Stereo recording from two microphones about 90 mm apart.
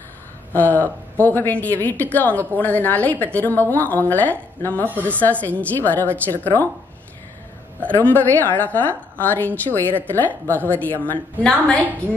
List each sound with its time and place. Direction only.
0.5 s a woman's voice: 20° left (ahead or behind)
4.8 s a woman's voice: 20° right (ahead or behind)
5.1 s a woman's voice: 15° left (ahead or behind)
7.8 s a woman's voice: 20° left (ahead or behind)